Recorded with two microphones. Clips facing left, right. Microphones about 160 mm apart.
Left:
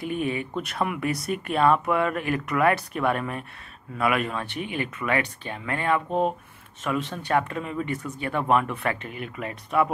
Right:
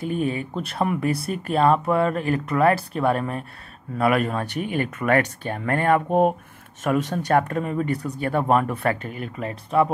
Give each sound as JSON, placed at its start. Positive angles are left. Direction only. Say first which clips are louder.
{"t": 0.0, "sound": "speech", "louder": "right 3 dB", "side_deg": -35}